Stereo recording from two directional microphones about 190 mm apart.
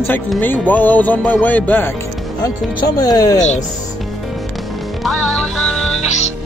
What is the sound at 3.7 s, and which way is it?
Music, centre (ahead or behind).